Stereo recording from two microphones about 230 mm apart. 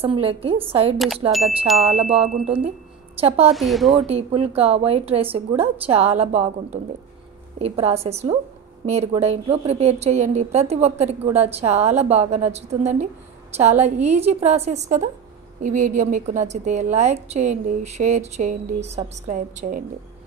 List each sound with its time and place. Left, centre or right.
0.0 s a woman's voice: right
0.9 s speech: centre
2.0 s a woman's voice: right
3.5 s speech: centre
4.1 s a woman's voice: right